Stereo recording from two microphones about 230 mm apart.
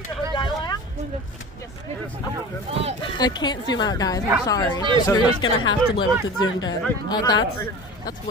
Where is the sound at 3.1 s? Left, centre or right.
Centre.